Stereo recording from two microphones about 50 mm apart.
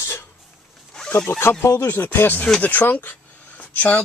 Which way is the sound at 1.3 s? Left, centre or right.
Left.